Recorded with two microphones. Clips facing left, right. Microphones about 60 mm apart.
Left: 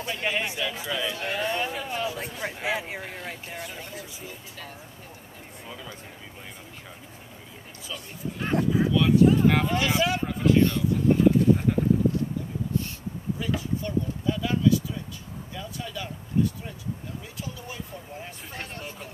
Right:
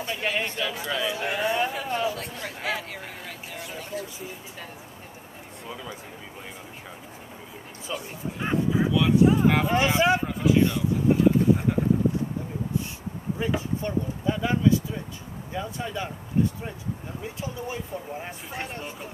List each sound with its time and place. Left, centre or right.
0.0 s a man's voice: centre
2.1 s speech: centre
2.4 s speech: left
3.0 s a man's voice: centre
7.9 s speech: centre
9.7 s speech: right
10.2 s speech: centre
13.4 s speech: right